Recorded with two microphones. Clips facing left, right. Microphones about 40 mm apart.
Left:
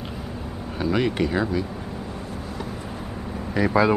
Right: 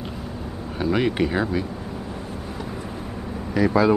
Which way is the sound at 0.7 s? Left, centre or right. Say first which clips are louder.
Right 1 dB; centre.